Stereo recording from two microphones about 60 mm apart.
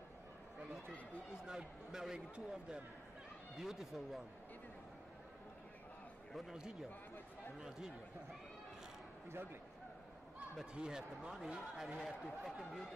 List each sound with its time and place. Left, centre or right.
1.4 s speech: centre
6.3 s speech: centre
9.3 s a man's voice: right
10.6 s speech: centre